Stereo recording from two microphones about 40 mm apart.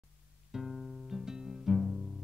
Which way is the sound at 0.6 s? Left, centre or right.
Centre.